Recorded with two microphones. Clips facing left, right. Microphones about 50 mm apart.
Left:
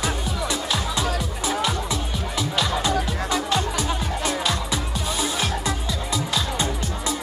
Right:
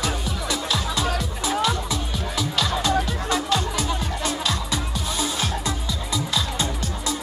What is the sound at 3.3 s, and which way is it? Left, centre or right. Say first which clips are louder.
Music: even; left.